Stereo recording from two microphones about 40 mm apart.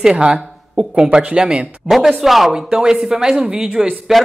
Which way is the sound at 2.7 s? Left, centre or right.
Centre.